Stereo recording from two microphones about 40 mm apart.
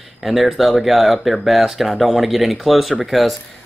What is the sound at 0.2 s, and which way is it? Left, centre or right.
Speech, centre.